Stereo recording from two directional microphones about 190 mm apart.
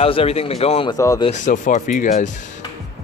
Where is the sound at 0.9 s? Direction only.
15° left (ahead or behind).